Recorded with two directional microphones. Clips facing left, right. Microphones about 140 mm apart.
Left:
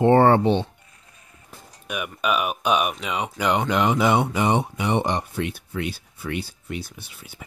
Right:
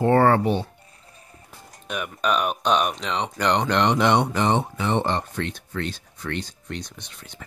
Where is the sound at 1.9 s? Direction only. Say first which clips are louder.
Even; 10° left (ahead or behind).